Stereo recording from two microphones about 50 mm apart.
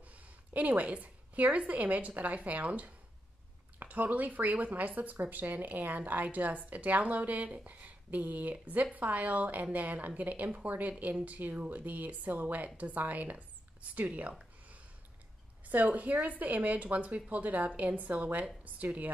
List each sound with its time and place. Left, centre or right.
0.1 s a woman's voice: right
15.6 s a woman's voice: right